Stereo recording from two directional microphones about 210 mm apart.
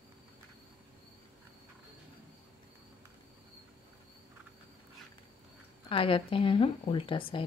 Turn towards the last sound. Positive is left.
turn(degrees=25)  # may be behind; listen again after turning